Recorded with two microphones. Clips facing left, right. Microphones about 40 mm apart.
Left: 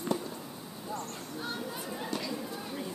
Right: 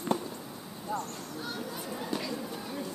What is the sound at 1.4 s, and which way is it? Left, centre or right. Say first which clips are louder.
Chatter: left 1 dB; centre.